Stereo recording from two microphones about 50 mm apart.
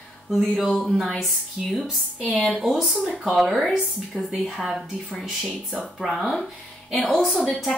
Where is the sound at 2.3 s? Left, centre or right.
Centre.